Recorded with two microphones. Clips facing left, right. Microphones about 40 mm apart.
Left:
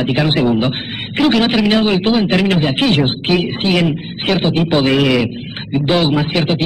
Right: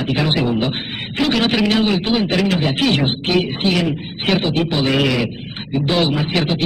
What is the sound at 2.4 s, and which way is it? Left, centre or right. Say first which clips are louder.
Speech: left 3 dB; left.